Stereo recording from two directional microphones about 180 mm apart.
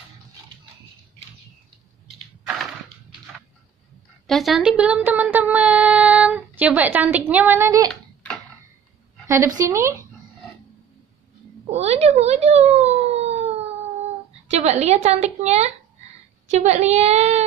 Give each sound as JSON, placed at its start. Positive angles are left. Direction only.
{"t": 4.3, "sound": "speech", "side_deg": 0}
{"t": 7.9, "sound": "a sound", "side_deg": 5}
{"t": 9.2, "sound": "a woman's voice", "side_deg": -15}
{"t": 11.7, "sound": "speech", "side_deg": -35}
{"t": 14.5, "sound": "a woman's voice", "side_deg": -40}